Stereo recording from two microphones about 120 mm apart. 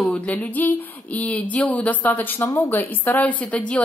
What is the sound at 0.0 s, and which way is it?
A woman's voice, 10° left (ahead or behind).